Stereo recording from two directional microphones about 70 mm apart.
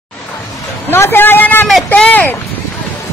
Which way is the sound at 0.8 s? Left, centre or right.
Left.